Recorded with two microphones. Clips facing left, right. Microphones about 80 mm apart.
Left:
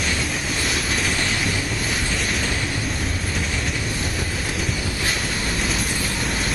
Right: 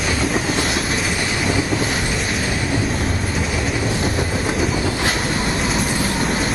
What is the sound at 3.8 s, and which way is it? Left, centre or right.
Train, right.